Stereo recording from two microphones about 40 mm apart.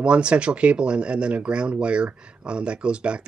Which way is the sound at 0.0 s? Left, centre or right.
Right.